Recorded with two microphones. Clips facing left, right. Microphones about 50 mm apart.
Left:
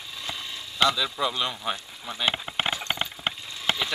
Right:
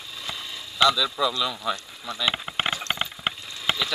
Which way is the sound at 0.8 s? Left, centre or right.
Left.